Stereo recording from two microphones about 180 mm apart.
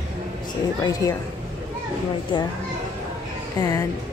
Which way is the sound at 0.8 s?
20° left (ahead or behind).